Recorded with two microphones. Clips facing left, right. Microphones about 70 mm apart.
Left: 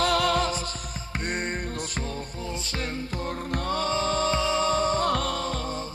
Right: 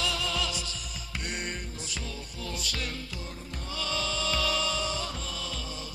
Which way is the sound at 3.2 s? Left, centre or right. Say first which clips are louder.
Left 11 dB; left.